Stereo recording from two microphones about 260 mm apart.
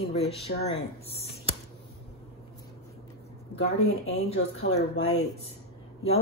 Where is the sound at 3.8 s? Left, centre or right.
Left.